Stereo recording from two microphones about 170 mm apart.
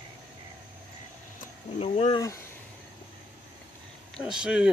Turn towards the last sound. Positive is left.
turn(degrees=-5)  # may be behind; listen again after turning